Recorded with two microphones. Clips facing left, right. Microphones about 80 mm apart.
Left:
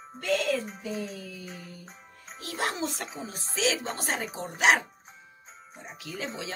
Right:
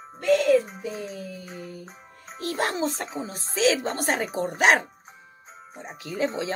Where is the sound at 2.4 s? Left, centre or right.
Right.